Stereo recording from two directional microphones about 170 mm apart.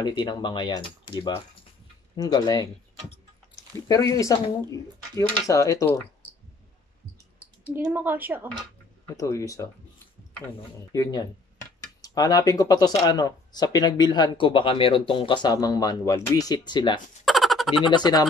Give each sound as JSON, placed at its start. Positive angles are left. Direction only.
{"t": 0.0, "sound": "speech", "side_deg": 25}
{"t": 3.8, "sound": "speech", "side_deg": 20}
{"t": 7.7, "sound": "a woman's voice", "side_deg": -10}
{"t": 9.0, "sound": "speech", "side_deg": 15}
{"t": 10.9, "sound": "speech", "side_deg": 20}
{"t": 17.2, "sound": "a sound", "side_deg": 0}
{"t": 17.8, "sound": "speech", "side_deg": 25}